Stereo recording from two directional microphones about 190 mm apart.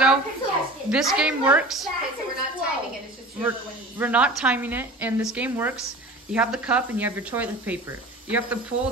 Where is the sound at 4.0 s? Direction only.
5° right (ahead or behind).